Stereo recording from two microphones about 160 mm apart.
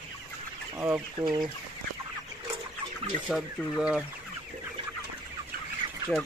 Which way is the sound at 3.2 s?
Centre (ahead or behind).